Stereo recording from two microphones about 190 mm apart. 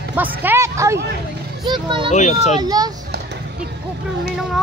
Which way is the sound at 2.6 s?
20° right (ahead or behind).